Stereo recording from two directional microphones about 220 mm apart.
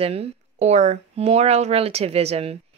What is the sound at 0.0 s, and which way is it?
Speech, 25° right (ahead or behind).